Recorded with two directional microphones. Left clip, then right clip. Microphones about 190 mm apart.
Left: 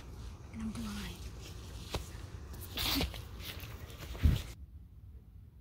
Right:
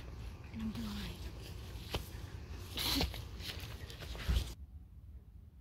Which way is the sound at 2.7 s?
20° left (ahead or behind).